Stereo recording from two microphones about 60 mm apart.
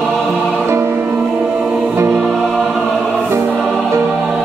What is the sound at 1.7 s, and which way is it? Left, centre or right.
Music, right.